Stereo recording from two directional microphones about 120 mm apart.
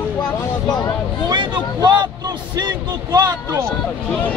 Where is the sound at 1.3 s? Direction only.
35° right (ahead or behind).